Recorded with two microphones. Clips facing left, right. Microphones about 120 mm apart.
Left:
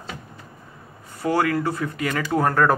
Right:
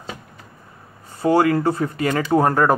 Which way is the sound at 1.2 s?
30° right (ahead or behind).